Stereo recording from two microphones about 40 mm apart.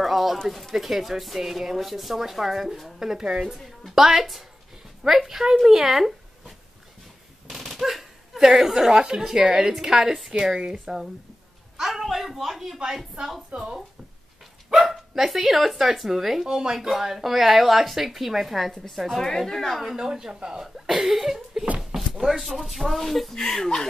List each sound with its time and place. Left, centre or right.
0.0 s a sound: centre
0.5 s a woman's voice: centre; by 9.7 s right
9.7 s speech: centre
11.9 s speech: centre
13.5 s speech: right
14.7 s speech: centre
20.0 s speech: centre
21.9 s a sound: centre
22.6 s speech: centre